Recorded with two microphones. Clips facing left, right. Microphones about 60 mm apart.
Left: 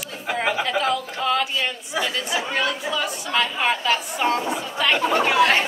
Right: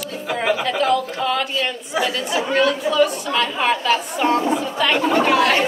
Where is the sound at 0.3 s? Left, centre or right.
Centre.